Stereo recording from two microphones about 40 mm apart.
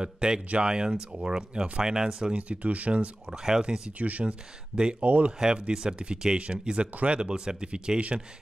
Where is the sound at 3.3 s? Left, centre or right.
Centre.